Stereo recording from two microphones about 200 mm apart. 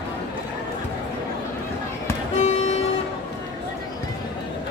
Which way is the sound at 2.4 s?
30° left (ahead or behind).